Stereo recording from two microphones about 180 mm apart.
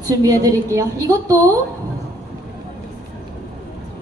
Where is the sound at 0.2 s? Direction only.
20° right (ahead or behind).